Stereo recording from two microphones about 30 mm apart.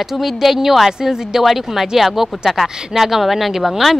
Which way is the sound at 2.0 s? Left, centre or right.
Centre.